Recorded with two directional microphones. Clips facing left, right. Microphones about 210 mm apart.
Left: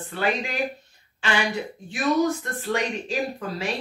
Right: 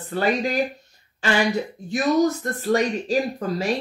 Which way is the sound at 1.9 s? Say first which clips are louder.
Right 3 dB; 40° right (ahead or behind).